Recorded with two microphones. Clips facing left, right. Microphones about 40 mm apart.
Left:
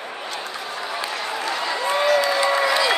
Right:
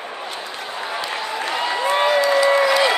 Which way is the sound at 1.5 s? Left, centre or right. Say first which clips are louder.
Right 3 dB; right.